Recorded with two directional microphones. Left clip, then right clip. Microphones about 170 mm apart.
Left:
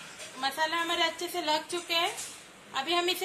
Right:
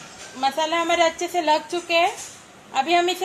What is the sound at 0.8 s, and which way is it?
A woman's voice, 55° right (ahead or behind).